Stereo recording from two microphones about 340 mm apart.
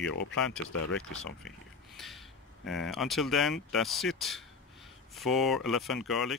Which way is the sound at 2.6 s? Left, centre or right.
Centre.